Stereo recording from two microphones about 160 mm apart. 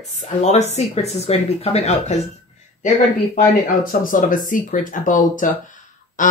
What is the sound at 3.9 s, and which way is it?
Speech, 60° left (ahead or behind).